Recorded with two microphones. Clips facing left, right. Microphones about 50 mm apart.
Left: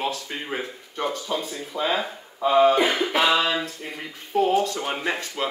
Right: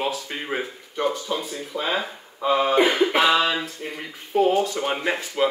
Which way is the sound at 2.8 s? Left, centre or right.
Centre.